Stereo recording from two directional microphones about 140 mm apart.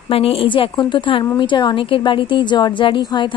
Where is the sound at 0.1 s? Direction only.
40° left (ahead or behind).